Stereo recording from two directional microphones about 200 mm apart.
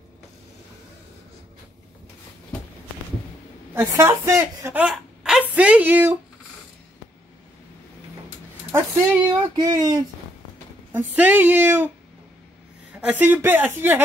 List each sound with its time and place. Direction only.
3.7 s a woman's voice: 15° right (ahead or behind)
9.2 s speech: 20° right (ahead or behind)
10.9 s speech: 10° right (ahead or behind)
13.0 s speech: 10° right (ahead or behind)